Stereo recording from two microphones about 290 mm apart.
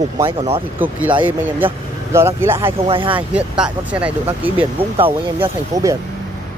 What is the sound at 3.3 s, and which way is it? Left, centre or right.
Speech, centre.